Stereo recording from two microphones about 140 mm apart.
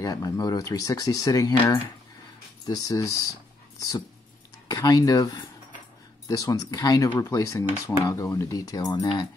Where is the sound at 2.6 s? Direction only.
25° left (ahead or behind).